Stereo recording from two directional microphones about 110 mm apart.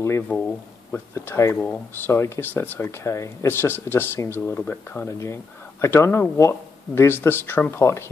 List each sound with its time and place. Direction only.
0.3 s speech: 20° left (ahead or behind)